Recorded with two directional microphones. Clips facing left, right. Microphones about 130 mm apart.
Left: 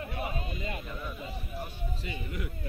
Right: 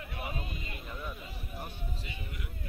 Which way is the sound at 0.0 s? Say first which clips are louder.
Left 6 dB; 35° left (ahead or behind).